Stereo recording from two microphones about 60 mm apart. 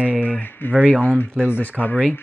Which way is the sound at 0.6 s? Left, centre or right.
Left.